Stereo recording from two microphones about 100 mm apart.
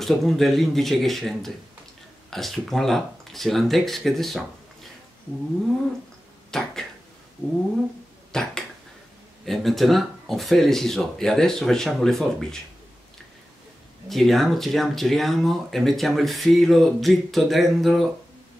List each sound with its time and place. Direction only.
0.0 s speech: centre (ahead or behind)
6.5 s a sound: 5° left (ahead or behind)
7.4 s cat: 20° left (ahead or behind)
8.3 s a sound: 5° left (ahead or behind)
9.4 s speech: centre (ahead or behind)
14.0 s speech: centre (ahead or behind)